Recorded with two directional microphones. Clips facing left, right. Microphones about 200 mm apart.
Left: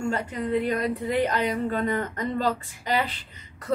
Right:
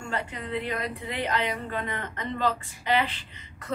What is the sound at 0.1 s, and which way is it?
A woman's voice, 40° left (ahead or behind).